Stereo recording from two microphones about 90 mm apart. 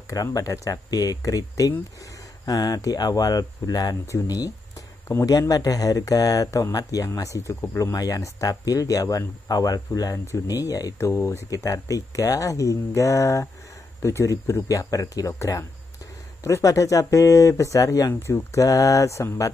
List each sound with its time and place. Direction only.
0.1 s speech: 40° left (ahead or behind)